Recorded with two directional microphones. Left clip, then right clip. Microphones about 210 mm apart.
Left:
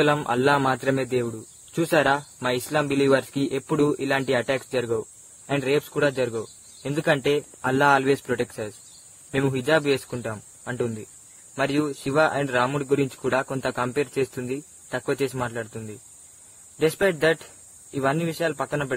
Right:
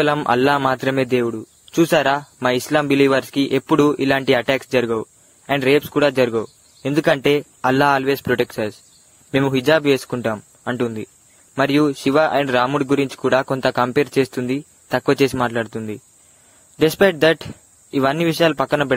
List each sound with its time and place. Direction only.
0.0 s a man's voice: 25° right (ahead or behind)